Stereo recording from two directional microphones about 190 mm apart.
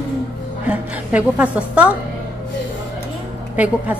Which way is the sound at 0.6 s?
5° right (ahead or behind).